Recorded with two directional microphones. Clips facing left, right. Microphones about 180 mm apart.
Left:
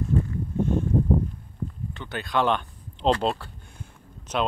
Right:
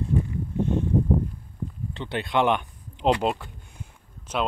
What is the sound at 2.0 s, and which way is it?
Speech, 25° right (ahead or behind).